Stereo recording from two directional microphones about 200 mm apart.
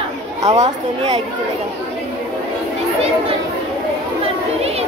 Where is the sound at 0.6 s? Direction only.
35° right (ahead or behind).